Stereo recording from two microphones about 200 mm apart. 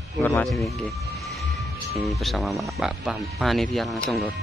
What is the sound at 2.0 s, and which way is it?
Speech, centre (ahead or behind).